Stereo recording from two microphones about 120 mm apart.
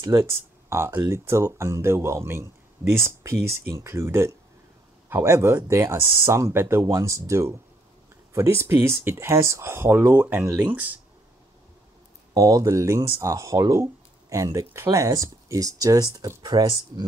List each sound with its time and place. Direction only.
0.0 s speech: 25° right (ahead or behind)
12.4 s speech: 30° right (ahead or behind)